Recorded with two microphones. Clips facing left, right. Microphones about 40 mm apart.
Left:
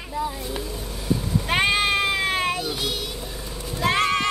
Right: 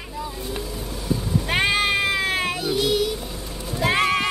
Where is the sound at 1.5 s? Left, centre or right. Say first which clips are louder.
Even; centre.